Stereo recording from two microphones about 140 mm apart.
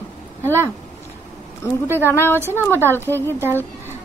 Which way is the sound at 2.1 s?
15° left (ahead or behind).